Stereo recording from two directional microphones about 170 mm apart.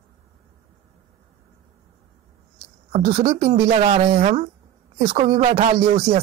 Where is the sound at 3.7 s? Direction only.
35° right (ahead or behind); by 6.2 s 60° right (ahead or behind).